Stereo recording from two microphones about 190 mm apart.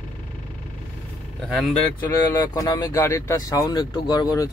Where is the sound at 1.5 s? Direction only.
5° left (ahead or behind).